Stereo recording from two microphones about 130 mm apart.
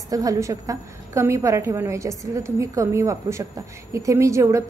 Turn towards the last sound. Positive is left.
turn(degrees=-25)  # may be behind; listen again after turning